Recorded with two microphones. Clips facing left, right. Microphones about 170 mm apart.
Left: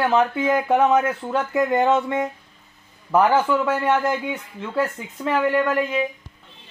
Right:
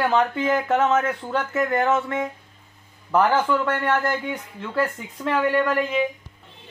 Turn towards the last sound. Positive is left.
turn(degrees=0)  # may be behind; listen again after turning